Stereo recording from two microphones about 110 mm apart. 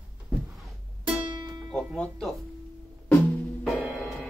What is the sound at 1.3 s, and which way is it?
Music, 35° right (ahead or behind).